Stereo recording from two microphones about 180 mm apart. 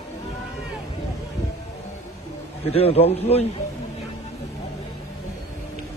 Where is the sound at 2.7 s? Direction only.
35° left (ahead or behind).